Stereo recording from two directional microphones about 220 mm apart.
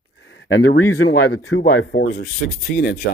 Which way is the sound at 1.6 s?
45° left (ahead or behind).